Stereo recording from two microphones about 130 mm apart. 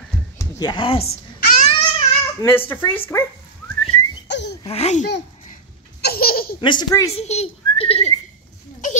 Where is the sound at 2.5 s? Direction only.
15° left (ahead or behind).